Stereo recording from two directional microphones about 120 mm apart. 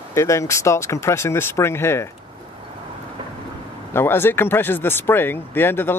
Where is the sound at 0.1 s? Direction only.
25° left (ahead or behind).